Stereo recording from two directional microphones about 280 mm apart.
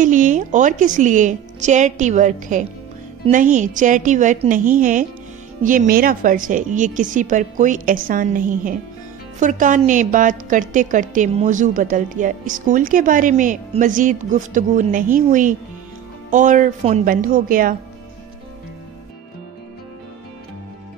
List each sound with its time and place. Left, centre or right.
0.0 s a woman's voice: right